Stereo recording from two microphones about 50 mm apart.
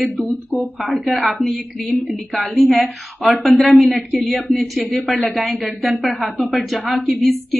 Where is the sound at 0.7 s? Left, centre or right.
Right.